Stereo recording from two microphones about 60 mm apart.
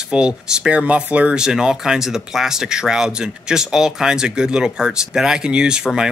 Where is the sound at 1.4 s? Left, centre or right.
Centre.